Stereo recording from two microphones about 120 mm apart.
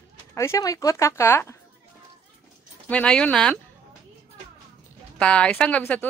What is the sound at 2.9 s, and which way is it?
Speech, 10° left (ahead or behind).